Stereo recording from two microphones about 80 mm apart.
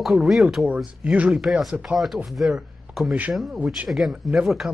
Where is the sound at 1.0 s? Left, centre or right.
Centre.